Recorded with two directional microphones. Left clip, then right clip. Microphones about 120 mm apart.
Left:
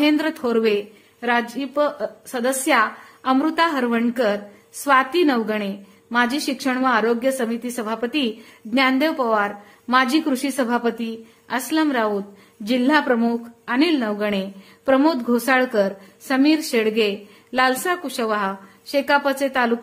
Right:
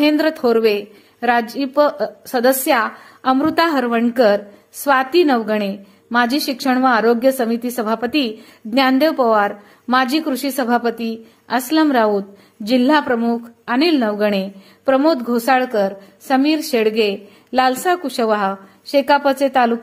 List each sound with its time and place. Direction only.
0.0 s a woman's voice: 35° right (ahead or behind)